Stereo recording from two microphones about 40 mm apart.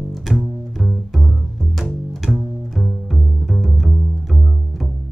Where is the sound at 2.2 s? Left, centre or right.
Centre.